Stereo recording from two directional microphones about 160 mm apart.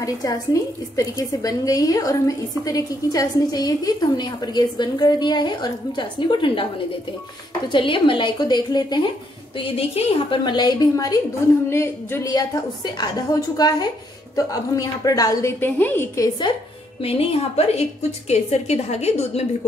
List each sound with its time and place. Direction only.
0.0 s a woman's voice: 20° left (ahead or behind)
7.7 s a woman's voice: 30° left (ahead or behind)
9.6 s a woman's voice: 40° left (ahead or behind); by 15.5 s 25° left (ahead or behind)
15.6 s a woman's voice: 10° left (ahead or behind)
17.0 s a woman's voice: 35° left (ahead or behind)